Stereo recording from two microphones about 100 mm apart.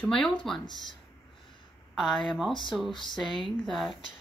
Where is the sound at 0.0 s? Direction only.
5° left (ahead or behind).